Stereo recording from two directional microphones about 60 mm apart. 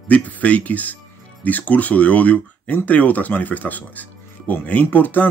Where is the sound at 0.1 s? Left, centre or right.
Left.